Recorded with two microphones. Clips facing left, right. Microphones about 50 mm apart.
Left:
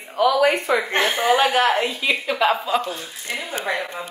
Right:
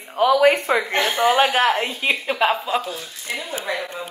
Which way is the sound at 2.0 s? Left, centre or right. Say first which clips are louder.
Even; right.